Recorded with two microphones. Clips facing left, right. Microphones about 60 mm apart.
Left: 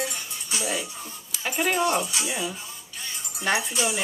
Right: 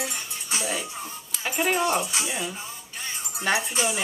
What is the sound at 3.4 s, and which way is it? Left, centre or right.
Speech, centre.